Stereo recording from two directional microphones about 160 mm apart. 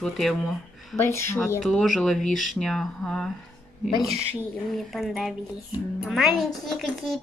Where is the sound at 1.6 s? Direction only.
Centre (ahead or behind).